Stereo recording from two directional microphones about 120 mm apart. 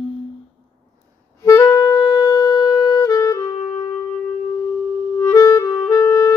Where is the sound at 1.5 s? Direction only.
25° left (ahead or behind).